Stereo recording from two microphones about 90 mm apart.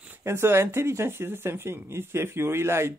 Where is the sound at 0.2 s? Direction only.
30° right (ahead or behind).